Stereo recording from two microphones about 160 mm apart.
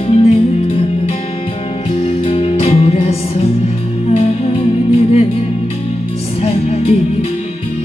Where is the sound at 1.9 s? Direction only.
40° left (ahead or behind).